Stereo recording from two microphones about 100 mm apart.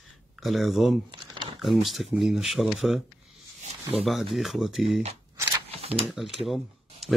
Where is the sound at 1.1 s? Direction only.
50° right (ahead or behind).